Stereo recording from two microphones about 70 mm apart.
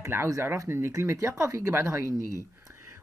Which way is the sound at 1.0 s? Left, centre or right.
Right.